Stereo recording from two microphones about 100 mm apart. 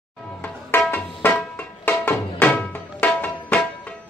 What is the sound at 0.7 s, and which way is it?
Music, 20° left (ahead or behind).